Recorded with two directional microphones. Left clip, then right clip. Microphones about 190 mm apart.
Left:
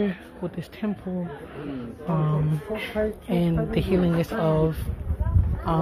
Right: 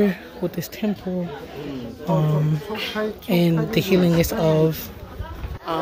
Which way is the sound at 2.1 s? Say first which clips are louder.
Right 5 dB; 25° right (ahead or behind).